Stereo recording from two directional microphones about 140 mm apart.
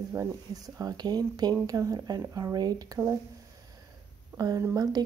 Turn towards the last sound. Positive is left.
turn(degrees=-25)  # may be behind; listen again after turning